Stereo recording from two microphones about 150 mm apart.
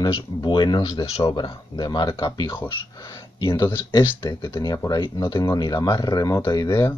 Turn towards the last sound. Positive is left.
turn(degrees=25)  # may be behind; listen again after turning